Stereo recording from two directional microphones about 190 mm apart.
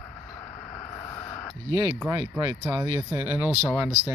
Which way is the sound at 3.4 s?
5° right (ahead or behind).